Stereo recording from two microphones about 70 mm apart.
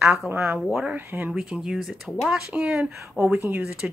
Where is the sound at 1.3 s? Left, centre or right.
Centre.